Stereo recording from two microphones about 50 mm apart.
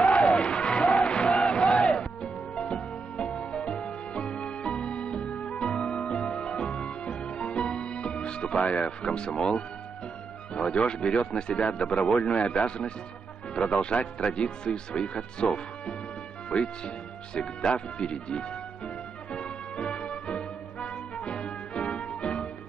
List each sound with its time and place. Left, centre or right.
0.2 s crowd: left
0.5 s music: centre
10.5 s speech: centre
19.3 s music: left